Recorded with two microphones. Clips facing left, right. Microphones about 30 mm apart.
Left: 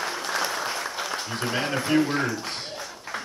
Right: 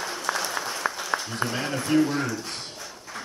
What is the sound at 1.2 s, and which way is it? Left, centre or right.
Speech, left.